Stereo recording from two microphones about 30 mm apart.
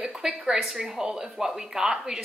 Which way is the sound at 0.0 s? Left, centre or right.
Centre.